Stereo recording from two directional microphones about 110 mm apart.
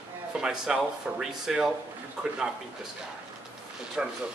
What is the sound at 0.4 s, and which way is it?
Speech, 5° right (ahead or behind).